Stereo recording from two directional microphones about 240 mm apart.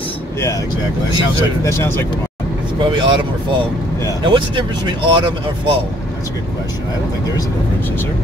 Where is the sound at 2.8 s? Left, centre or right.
Centre.